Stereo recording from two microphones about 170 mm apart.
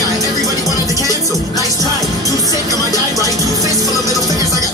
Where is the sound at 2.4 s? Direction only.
20° right (ahead or behind).